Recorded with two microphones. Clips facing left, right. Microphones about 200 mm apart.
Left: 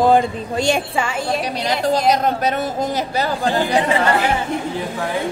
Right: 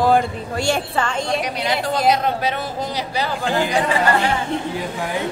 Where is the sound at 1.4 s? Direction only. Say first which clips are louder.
Left 2 dB; 35° left (ahead or behind).